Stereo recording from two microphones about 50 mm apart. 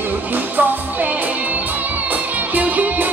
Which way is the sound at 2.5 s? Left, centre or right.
Right.